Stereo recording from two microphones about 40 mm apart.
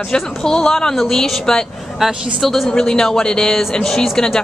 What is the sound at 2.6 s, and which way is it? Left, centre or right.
A woman's voice, centre.